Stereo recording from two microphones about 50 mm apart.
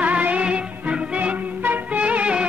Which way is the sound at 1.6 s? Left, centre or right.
Right.